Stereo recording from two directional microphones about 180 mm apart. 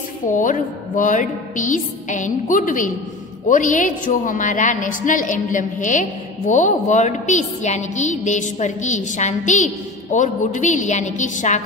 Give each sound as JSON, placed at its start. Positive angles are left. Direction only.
{"t": 0.3, "sound": "a woman's voice", "side_deg": 45}